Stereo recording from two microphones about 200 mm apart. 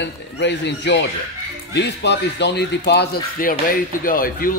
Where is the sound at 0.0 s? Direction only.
60° left (ahead or behind).